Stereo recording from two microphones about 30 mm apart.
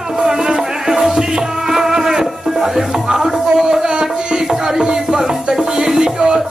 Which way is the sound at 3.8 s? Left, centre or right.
Right.